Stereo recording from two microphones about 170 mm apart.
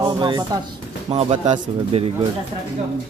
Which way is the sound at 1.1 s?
35° right (ahead or behind).